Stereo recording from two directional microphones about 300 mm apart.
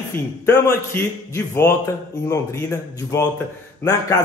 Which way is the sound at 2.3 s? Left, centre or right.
Centre.